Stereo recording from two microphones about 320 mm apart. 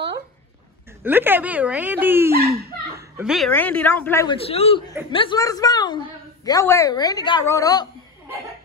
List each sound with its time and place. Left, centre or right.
1.0 s a man's voice: centre